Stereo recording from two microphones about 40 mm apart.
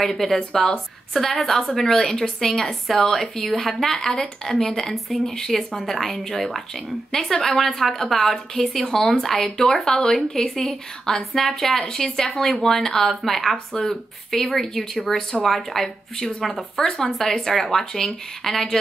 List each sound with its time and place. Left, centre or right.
0.0 s speech: centre
9.6 s speech: centre